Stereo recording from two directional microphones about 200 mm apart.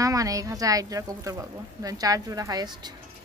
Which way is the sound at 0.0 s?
15° right (ahead or behind).